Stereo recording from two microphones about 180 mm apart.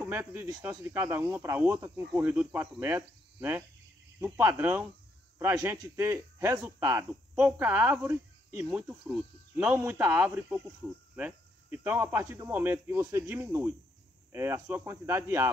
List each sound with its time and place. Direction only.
0.0 s speech: 10° right (ahead or behind)